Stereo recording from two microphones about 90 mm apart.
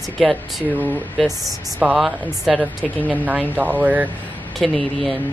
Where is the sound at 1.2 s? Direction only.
Centre (ahead or behind).